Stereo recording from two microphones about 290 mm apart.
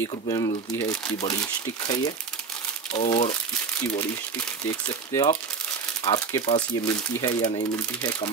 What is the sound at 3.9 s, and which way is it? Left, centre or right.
Speech, centre.